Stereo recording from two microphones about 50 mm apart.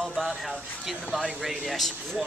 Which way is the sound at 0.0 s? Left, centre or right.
Centre.